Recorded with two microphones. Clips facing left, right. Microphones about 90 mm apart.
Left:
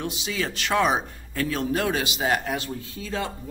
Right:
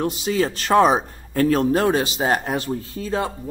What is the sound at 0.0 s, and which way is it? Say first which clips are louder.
A man's voice: right 8 dB; 40° right (ahead or behind).